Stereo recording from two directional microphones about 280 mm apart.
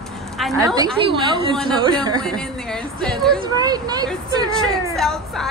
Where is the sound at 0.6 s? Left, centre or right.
Centre.